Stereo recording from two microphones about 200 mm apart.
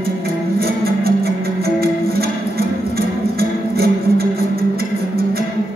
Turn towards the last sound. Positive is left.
turn(degrees=-50)  # may be behind; listen again after turning